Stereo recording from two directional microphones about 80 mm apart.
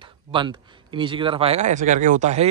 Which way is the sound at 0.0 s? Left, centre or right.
Right.